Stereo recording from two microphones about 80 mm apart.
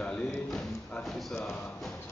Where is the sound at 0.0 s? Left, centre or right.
Centre.